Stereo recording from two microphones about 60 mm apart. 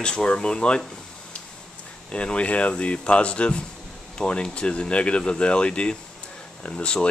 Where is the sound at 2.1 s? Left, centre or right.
Centre.